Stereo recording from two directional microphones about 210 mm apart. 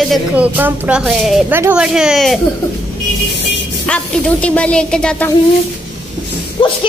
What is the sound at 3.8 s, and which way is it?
Speech, 5° left (ahead or behind).